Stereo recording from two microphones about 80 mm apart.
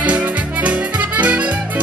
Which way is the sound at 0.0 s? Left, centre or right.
Centre.